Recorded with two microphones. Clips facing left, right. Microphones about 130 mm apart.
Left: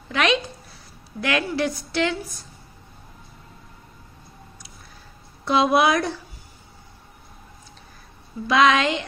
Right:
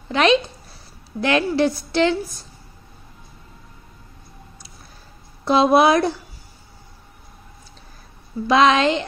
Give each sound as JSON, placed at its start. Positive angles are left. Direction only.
{"t": 0.1, "sound": "a woman's voice", "side_deg": -30}
{"t": 5.4, "sound": "a woman's voice", "side_deg": -30}
{"t": 8.5, "sound": "a woman's voice", "side_deg": -30}